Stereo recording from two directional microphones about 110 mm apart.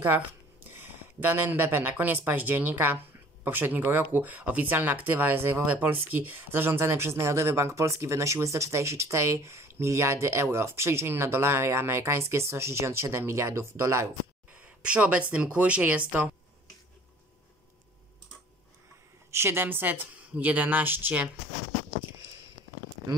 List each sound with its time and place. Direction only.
0.7 s speech: 20° right (ahead or behind)
14.5 s speech: 15° right (ahead or behind)
19.3 s a woman's voice: 20° right (ahead or behind)